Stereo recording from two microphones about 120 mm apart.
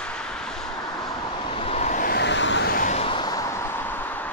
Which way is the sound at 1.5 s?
55° left (ahead or behind).